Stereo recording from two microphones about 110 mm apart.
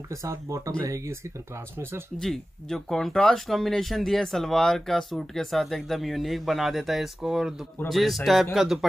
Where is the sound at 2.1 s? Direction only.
5° left (ahead or behind).